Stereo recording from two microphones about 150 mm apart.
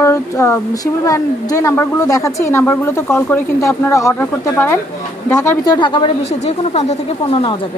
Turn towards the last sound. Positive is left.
turn(degrees=35)  # may be behind; listen again after turning